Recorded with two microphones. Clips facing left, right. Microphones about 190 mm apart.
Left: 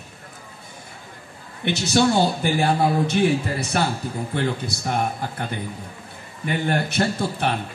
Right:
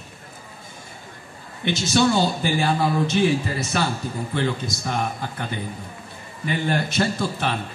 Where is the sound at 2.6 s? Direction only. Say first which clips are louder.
Left 2 dB; 35° left (ahead or behind).